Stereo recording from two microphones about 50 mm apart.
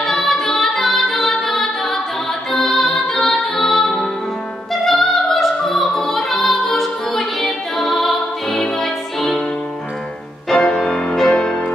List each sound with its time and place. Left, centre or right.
0.0 s music: centre
1.3 s a capella: centre
2.5 s music: centre
10.5 s music: centre